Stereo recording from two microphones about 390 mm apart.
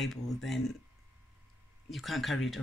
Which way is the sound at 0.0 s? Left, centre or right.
Centre.